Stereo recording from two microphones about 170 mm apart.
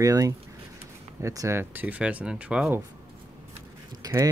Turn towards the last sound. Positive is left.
turn(degrees=-20)  # may be behind; listen again after turning